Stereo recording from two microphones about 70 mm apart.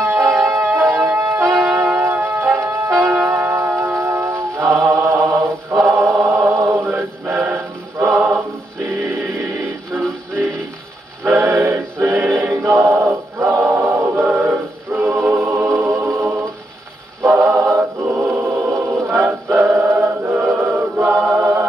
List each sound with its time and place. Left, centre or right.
0.0 s music: right
4.0 s music: right
4.8 s mantra: right
5.9 s choir: right
6.2 s a sound: right
6.7 s chant: right
11.2 s music: right
12.5 s male singing: right
13.7 s choir: right
14.1 s choir: right
15.0 s music: right
16.1 s a capella: right
17.2 s music: right
17.7 s choir: right